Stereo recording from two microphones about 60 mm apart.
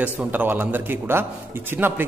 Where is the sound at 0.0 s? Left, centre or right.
Right.